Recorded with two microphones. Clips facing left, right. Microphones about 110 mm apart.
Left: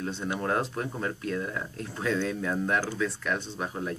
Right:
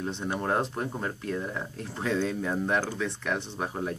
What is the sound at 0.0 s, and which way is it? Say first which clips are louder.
Speech: even; 25° right (ahead or behind).